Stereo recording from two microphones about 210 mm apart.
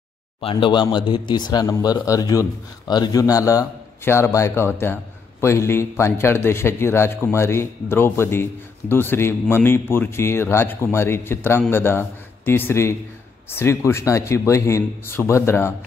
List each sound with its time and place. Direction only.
0.4 s a man's voice: 25° left (ahead or behind)